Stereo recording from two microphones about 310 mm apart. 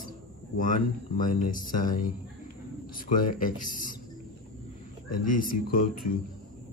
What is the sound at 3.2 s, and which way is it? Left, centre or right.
Mantra, left.